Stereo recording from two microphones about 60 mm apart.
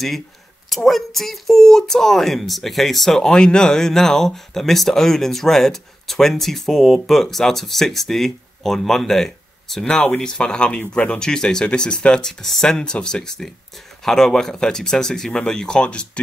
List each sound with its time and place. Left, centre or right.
0.7 s speech: centre